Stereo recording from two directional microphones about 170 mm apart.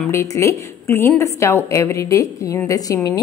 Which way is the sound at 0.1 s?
15° left (ahead or behind).